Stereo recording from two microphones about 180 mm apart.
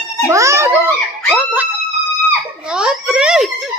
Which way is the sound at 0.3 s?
15° right (ahead or behind).